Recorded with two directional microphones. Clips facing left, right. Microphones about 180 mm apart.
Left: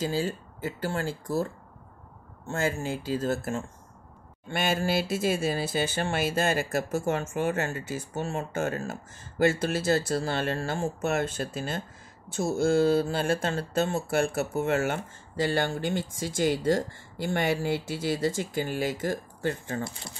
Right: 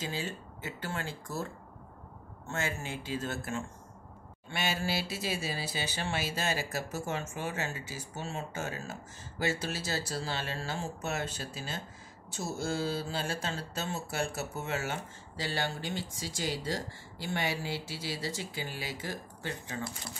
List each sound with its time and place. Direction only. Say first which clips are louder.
0.0 s speech: left 8 dB; 40° left (ahead or behind)
4.5 s speech: left 6 dB; 50° left (ahead or behind)